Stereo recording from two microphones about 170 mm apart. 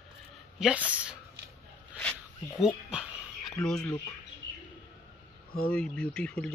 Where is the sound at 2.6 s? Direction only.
5° right (ahead or behind).